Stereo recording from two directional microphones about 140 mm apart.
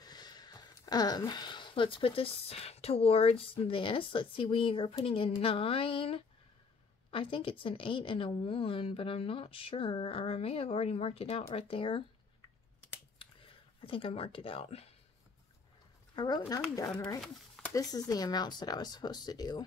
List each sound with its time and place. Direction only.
0.0 s a woman's voice: 30° left (ahead or behind)
13.7 s a woman's voice: 40° left (ahead or behind)
16.2 s speech: 30° left (ahead or behind)
17.7 s speech: 25° left (ahead or behind)